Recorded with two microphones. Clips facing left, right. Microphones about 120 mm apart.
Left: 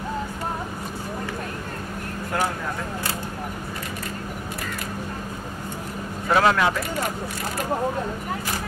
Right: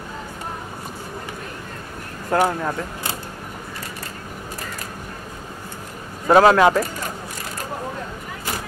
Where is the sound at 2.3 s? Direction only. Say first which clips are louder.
Right 7 dB; 40° right (ahead or behind).